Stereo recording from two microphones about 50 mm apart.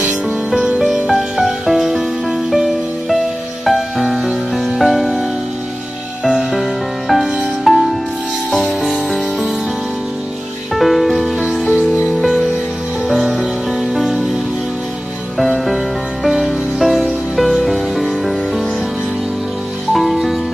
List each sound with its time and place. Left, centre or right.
0.6 s music: centre
6.5 s music: centre
10.7 s music: centre
15.3 s music: centre
19.9 s music: centre